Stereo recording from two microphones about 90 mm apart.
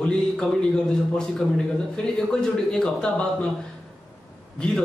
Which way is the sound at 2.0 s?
5° left (ahead or behind).